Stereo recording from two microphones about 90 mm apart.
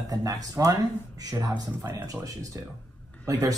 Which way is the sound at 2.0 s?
40° right (ahead or behind).